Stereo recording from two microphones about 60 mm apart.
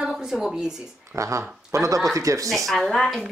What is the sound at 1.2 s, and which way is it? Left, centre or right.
Speech, right.